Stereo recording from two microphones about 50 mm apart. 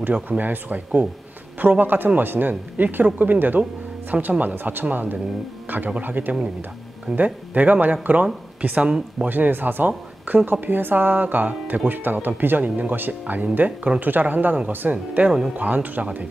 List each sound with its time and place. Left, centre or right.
0.1 s speech: right
9.3 s speech: right